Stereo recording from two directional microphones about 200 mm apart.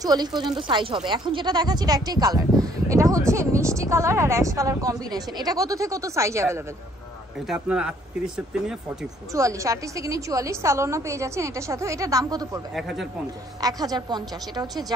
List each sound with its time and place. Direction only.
0.0 s speech: 20° right (ahead or behind)
9.3 s speech: 15° right (ahead or behind)
12.7 s speech: centre (ahead or behind)
13.6 s a woman's voice: 20° right (ahead or behind)